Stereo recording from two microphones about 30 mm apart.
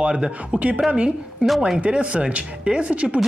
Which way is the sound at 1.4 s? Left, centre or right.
Right.